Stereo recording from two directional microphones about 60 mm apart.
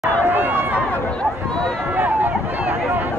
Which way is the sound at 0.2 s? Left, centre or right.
Right.